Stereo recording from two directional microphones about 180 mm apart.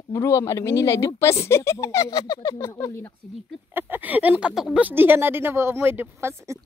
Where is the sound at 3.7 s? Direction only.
10° right (ahead or behind).